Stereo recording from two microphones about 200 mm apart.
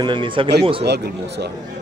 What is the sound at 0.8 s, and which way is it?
Speech, 55° right (ahead or behind).